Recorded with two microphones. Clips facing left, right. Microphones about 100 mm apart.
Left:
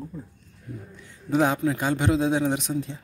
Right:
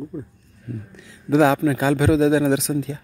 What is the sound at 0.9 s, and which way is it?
Speech, 90° right.